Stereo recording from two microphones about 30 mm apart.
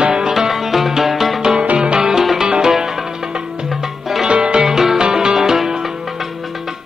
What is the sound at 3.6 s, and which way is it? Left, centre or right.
Music, centre.